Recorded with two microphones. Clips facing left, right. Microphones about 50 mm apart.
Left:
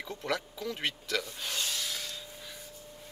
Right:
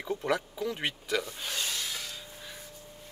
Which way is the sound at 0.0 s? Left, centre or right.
Centre.